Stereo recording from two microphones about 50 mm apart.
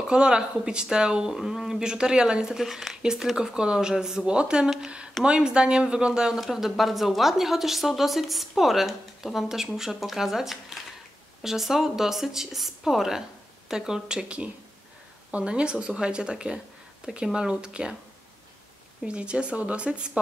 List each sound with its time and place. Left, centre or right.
0.0 s a woman's voice: centre
19.0 s speech: right